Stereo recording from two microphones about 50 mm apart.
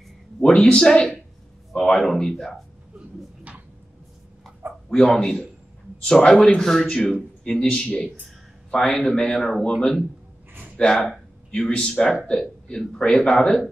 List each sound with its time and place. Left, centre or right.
0.7 s a man's voice: centre
4.9 s a man's voice: centre